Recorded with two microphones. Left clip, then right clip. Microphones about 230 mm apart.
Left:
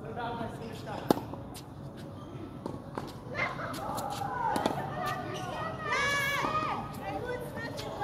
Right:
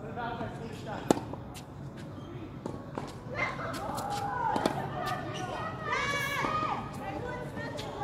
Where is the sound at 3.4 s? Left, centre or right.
Left.